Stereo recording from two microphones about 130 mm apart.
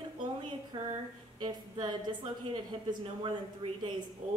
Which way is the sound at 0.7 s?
35° right (ahead or behind).